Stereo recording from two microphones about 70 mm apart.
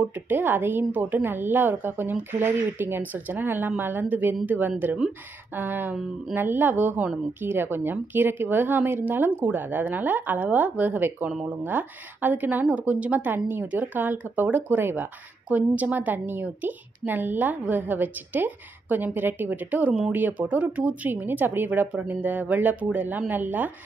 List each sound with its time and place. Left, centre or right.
0.0 s a woman's voice: right